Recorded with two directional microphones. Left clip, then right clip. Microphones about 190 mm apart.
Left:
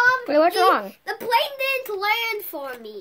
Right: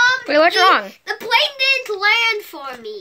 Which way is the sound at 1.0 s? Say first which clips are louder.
Right 4 dB; 60° left (ahead or behind).